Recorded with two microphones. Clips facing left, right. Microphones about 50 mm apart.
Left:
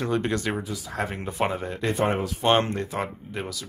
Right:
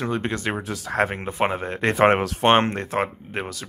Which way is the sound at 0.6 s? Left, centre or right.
Right.